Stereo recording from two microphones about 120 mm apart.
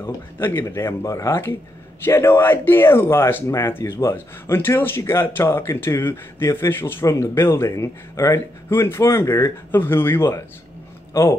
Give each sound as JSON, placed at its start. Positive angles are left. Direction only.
{"t": 0.0, "sound": "speech", "side_deg": 20}